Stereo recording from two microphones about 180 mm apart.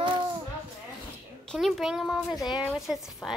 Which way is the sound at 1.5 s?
Centre (ahead or behind).